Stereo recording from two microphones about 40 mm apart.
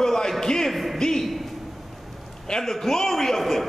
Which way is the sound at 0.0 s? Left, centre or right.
Centre.